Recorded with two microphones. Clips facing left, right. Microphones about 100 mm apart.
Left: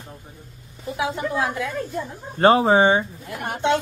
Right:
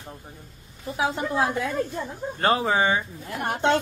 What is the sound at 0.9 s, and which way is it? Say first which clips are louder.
Speech: even; 35° right (ahead or behind).